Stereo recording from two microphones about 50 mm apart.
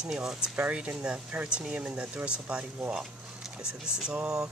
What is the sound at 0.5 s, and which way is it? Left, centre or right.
Speech, right.